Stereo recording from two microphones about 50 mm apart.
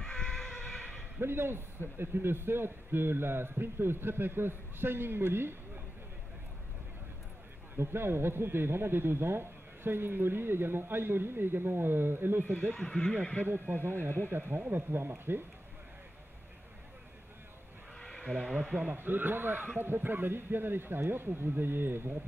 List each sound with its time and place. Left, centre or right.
0.0 s a sound: centre
1.2 s a man's voice: right
7.7 s a man's voice: right
12.7 s speech: centre
13.1 s speech: left
13.7 s a man's voice: right
18.0 s sheep: centre
18.9 s a man's voice: right